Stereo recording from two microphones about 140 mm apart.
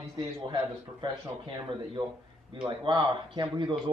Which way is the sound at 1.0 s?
35° right (ahead or behind).